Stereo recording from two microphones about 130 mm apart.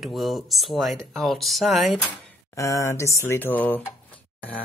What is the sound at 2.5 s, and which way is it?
Speech, 25° left (ahead or behind).